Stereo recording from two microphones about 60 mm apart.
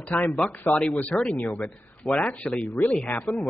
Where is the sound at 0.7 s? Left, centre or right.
Left.